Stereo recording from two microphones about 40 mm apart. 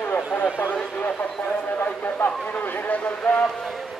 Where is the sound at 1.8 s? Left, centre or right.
Left.